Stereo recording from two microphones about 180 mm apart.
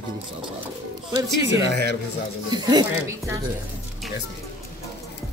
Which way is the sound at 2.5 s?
25° right (ahead or behind).